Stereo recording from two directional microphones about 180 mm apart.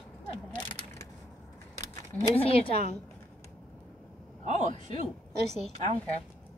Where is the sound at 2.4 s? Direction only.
30° left (ahead or behind).